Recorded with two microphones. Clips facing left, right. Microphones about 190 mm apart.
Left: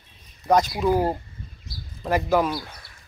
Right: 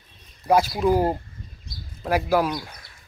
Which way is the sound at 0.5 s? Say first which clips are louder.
Right 1 dB; 5° right (ahead or behind).